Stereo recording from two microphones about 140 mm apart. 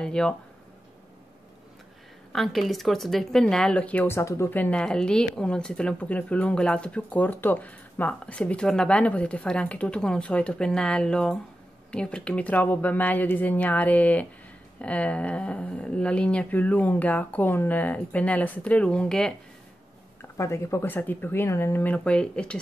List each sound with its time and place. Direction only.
0.0 s speech: 5° left (ahead or behind)
2.3 s speech: centre (ahead or behind)
20.3 s speech: 20° left (ahead or behind)